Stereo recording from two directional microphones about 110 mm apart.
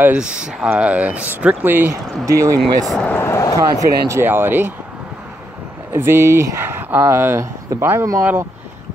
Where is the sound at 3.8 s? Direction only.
25° right (ahead or behind).